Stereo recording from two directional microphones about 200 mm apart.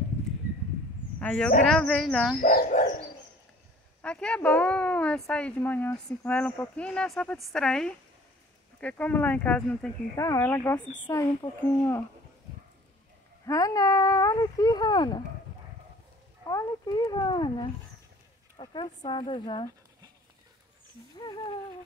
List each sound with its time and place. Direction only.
1.2 s a woman's voice: 5° left (ahead or behind)
2.4 s speech: 35° left (ahead or behind)
4.0 s speech: 5° left (ahead or behind)
13.5 s speech: 15° left (ahead or behind)
16.4 s speech: 20° left (ahead or behind)